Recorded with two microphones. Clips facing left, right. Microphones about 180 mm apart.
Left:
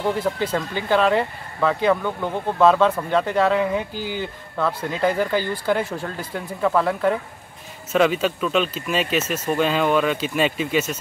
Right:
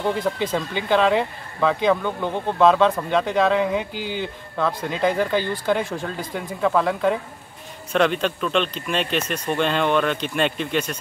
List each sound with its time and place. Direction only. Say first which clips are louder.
0.0 s speech: even; 5° left (ahead or behind)
3.9 s speech: even; 20° right (ahead or behind)
4.2 s speech: right 1 dB; 10° left (ahead or behind)